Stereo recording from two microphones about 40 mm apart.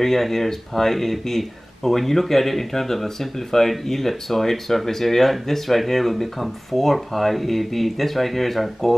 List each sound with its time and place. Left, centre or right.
0.0 s speech: centre